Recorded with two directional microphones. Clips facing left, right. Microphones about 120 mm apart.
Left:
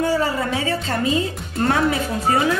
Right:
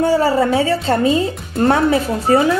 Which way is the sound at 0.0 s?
30° right (ahead or behind).